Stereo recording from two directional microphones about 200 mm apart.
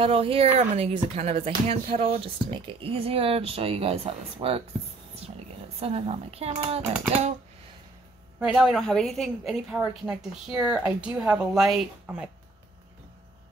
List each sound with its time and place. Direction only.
0.0 s speech: 30° right (ahead or behind)
5.8 s speech: 30° right (ahead or behind)
8.4 s a woman's voice: 5° right (ahead or behind)